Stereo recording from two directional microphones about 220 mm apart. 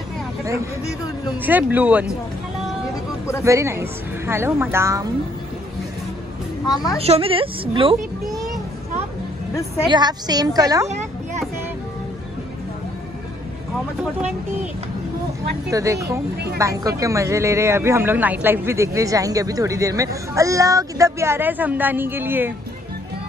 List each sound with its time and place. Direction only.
1.4 s a man's voice: 10° right (ahead or behind)
3.4 s a man's voice: 15° right (ahead or behind)
6.6 s a woman's voice: 15° left (ahead or behind)
7.0 s speech: 25° right (ahead or behind)
9.8 s a man's voice: 20° right (ahead or behind)
15.7 s a man's voice: 15° right (ahead or behind)